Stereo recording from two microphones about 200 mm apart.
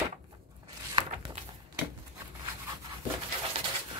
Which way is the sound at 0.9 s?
25° right (ahead or behind).